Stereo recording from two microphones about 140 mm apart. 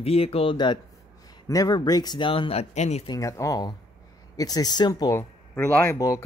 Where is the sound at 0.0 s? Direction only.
45° left (ahead or behind).